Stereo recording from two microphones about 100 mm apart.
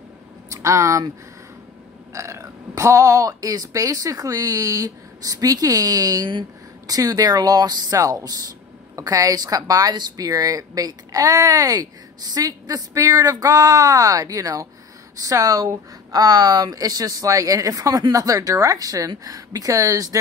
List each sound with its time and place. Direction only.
0.5 s speech: 30° right (ahead or behind)
2.1 s speech: 30° right (ahead or behind)